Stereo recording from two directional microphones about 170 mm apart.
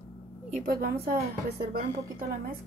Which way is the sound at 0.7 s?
65° right (ahead or behind).